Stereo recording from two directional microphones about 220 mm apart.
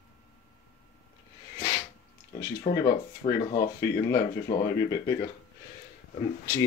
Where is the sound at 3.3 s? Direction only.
20° left (ahead or behind).